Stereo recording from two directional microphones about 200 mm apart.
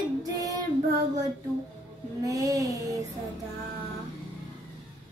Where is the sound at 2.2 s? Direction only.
15° right (ahead or behind).